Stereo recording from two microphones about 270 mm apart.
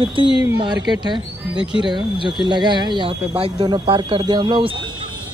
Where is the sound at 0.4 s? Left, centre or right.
Centre.